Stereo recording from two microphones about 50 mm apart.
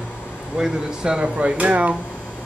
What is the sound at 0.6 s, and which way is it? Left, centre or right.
Speech, centre.